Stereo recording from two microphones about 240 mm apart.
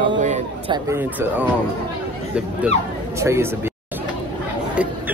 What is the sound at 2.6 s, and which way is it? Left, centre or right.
Speech, centre.